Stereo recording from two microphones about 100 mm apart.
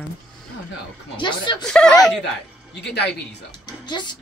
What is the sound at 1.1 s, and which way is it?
Speech, 50° left (ahead or behind).